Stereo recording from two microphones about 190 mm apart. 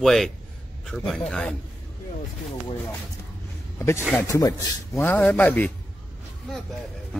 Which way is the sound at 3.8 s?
15° left (ahead or behind).